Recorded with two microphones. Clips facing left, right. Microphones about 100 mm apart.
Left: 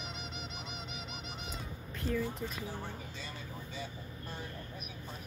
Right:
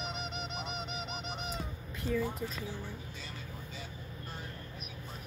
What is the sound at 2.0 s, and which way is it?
Speech, 5° right (ahead or behind).